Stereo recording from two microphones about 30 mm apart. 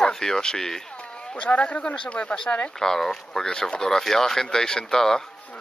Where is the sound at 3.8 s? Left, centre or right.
Centre.